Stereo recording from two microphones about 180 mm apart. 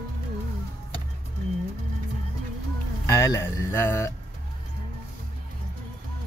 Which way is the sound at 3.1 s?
20° left (ahead or behind).